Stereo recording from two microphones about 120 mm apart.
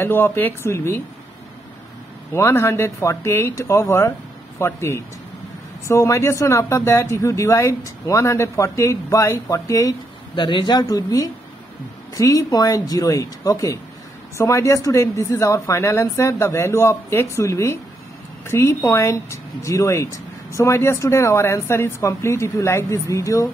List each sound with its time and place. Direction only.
0.0 s speech: 20° left (ahead or behind)
2.3 s speech: 20° left (ahead or behind)
10.3 s speech: 45° left (ahead or behind); by 23.5 s 25° left (ahead or behind)